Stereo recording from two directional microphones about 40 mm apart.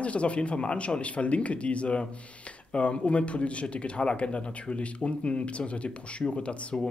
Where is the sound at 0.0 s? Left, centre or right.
Left.